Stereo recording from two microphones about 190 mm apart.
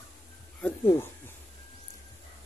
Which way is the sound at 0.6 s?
10° left (ahead or behind).